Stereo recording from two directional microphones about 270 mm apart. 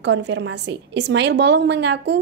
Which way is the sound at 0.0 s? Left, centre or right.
Right.